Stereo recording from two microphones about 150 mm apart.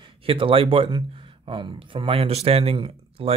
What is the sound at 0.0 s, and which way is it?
Speech, 35° right (ahead or behind).